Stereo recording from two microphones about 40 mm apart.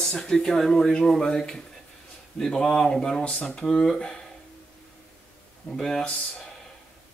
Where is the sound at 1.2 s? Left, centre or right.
Centre.